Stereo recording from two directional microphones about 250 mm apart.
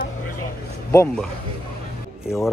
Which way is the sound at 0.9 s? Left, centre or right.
Centre.